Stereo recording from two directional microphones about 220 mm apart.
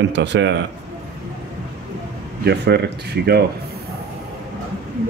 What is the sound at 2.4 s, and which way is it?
Speech, 50° right (ahead or behind).